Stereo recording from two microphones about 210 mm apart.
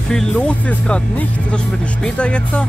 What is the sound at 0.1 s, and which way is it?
Speech, 5° left (ahead or behind).